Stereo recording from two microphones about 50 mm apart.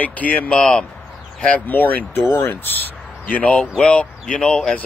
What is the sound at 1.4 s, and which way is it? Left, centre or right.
Speech, left.